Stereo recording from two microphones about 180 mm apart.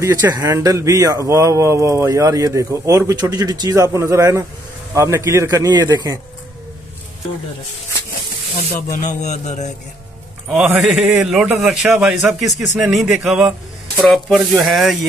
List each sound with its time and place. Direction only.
0.0 s speech: 20° right (ahead or behind)
8.9 s speech: 40° left (ahead or behind)
10.6 s a man's voice: 5° right (ahead or behind)